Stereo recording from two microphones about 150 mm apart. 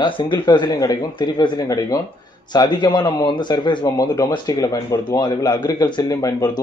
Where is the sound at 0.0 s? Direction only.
30° left (ahead or behind).